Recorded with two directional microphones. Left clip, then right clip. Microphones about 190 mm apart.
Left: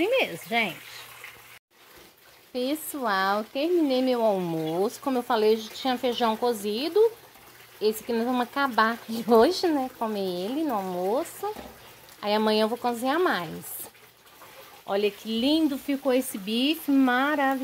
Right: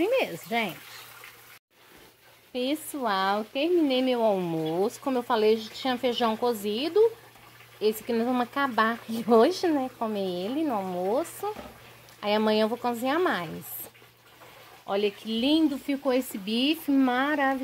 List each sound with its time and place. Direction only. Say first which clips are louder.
0.0 s speech: left 1 dB; 5° right (ahead or behind)
2.5 s speech: even; centre (ahead or behind)
14.9 s speech: left 1 dB; centre (ahead or behind)